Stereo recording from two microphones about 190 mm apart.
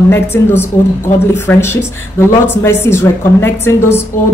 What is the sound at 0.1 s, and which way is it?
A woman's voice, 10° left (ahead or behind).